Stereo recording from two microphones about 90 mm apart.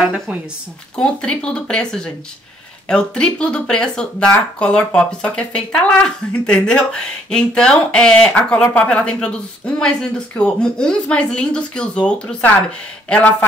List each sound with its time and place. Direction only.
0.0 s a woman's voice: 15° right (ahead or behind)
0.9 s speech: 10° left (ahead or behind)